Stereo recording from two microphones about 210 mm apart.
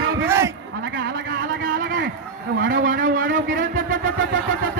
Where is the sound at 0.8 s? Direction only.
50° right (ahead or behind).